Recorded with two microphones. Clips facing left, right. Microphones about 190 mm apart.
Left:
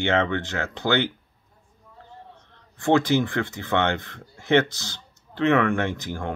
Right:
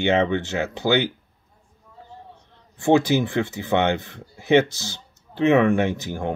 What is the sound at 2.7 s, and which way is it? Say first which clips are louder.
Speech: right 2 dB; 15° right (ahead or behind).